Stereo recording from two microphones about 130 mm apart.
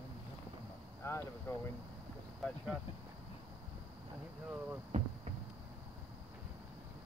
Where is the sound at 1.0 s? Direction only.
20° left (ahead or behind).